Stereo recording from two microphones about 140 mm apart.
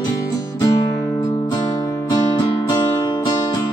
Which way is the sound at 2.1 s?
30° left (ahead or behind).